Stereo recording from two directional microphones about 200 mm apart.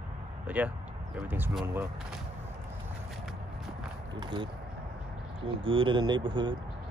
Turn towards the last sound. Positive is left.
turn(degrees=-25)  # may be behind; listen again after turning